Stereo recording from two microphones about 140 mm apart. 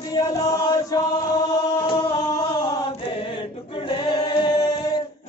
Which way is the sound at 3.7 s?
35° left (ahead or behind).